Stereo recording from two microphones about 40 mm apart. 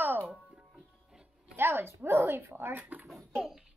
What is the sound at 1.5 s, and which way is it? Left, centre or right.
Speech, right.